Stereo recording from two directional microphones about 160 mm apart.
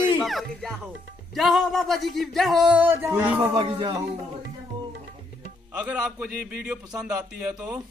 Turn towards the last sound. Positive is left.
turn(degrees=-10)  # may be behind; listen again after turning